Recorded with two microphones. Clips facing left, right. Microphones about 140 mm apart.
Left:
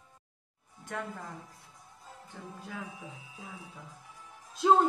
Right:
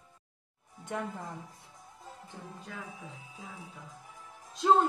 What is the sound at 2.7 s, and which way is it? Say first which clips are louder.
Speech: left 3 dB; centre (ahead or behind).